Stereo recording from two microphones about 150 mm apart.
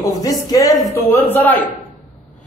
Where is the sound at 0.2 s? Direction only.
25° left (ahead or behind).